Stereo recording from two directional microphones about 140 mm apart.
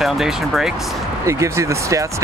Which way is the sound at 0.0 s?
5° right (ahead or behind).